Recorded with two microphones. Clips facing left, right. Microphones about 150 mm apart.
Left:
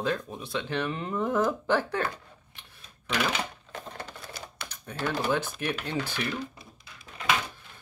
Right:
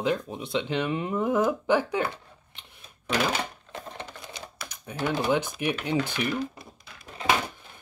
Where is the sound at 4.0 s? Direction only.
20° right (ahead or behind).